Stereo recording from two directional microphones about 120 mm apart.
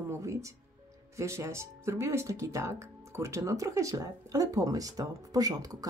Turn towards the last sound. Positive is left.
turn(degrees=-30)  # may be behind; listen again after turning